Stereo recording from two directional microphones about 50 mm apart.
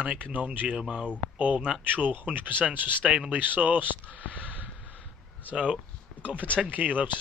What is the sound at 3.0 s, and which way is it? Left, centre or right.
Speech, right.